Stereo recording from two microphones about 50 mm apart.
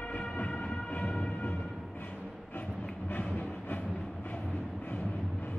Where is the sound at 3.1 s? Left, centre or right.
Left.